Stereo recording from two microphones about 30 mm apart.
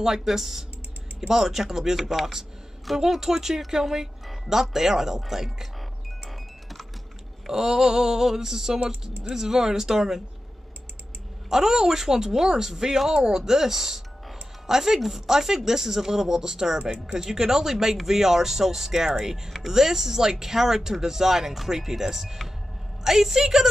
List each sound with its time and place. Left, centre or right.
0.0 s speech: centre
3.0 s speech: centre
7.4 s speech: centre
11.5 s speech: centre
13.1 s speech: right
13.5 s speech: centre